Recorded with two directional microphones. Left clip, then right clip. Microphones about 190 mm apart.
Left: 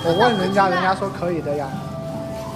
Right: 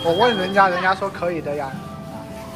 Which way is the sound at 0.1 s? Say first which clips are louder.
Even; 5° left (ahead or behind).